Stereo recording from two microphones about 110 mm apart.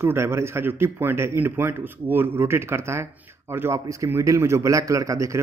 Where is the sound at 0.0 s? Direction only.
20° right (ahead or behind).